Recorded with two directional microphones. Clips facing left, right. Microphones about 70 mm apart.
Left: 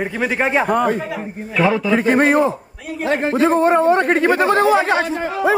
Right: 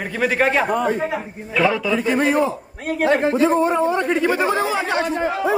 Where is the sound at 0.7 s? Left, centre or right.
Left.